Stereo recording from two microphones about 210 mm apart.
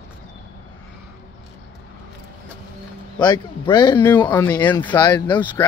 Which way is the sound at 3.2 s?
20° left (ahead or behind).